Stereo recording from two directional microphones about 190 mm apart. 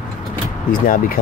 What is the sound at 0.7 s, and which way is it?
Speech, 45° left (ahead or behind).